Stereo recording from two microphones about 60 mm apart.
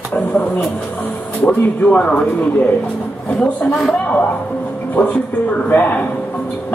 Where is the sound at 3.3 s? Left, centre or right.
Centre.